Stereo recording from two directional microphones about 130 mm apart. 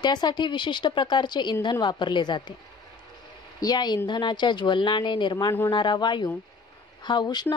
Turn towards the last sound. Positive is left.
turn(degrees=35)  # may be behind; listen again after turning